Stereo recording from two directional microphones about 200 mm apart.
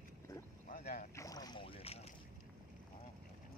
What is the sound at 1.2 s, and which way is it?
Boat, 20° left (ahead or behind).